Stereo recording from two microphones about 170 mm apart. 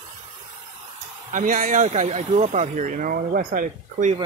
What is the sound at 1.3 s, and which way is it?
Speech, 50° right (ahead or behind).